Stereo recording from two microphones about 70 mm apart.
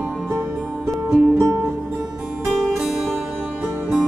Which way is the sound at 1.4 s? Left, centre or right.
Right.